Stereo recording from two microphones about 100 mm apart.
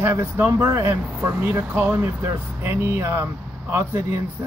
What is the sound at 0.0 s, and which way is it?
Speech, 25° right (ahead or behind).